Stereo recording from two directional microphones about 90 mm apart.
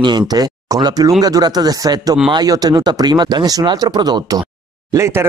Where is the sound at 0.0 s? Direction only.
50° right (ahead or behind).